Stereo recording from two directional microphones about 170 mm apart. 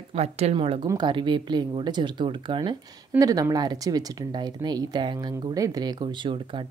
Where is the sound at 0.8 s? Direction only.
25° right (ahead or behind).